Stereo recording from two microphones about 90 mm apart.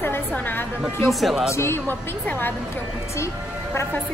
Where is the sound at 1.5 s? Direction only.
30° left (ahead or behind).